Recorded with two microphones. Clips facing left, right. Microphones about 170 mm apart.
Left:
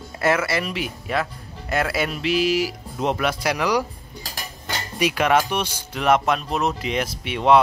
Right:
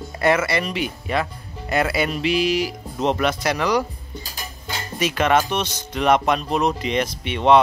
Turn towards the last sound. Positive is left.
turn(degrees=5)  # may be behind; listen again after turning